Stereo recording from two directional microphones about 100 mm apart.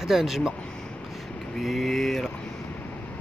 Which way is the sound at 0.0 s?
5° right (ahead or behind).